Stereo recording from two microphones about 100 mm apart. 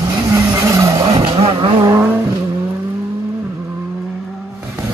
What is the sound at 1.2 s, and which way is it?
Vehicle, 70° right (ahead or behind).